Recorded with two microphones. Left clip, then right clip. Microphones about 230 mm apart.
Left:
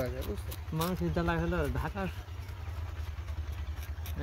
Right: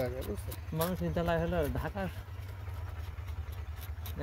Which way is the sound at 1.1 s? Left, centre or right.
Centre.